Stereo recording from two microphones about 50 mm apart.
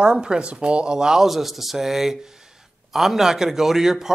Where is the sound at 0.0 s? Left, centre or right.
Centre.